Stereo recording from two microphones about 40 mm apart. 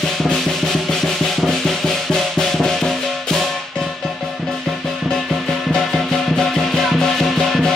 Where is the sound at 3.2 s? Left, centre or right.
Centre.